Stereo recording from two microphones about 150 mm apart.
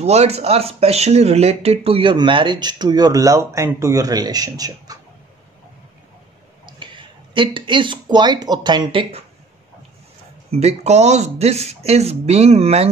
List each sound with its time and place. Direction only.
0.0 s speech: 45° right (ahead or behind); by 4.9 s 25° right (ahead or behind)
6.6 s speech: 35° right (ahead or behind)
10.5 s speech: 45° right (ahead or behind)